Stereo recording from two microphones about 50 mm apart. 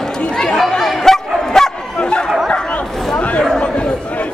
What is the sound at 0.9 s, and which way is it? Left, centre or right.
Bow-wow, centre.